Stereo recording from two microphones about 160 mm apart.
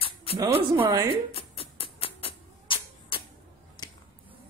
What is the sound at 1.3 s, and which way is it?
Music, 35° left (ahead or behind).